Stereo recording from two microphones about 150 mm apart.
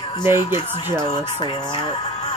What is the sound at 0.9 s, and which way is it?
Speech, 30° left (ahead or behind).